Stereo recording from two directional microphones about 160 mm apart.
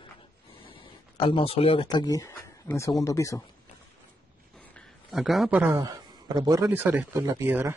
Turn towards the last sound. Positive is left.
turn(degrees=-15)  # may be behind; listen again after turning